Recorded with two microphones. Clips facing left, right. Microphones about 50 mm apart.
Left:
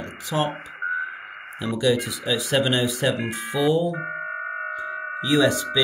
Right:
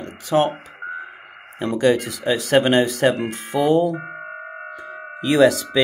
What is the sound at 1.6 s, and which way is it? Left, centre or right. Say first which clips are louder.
Speech: right 4 dB; right.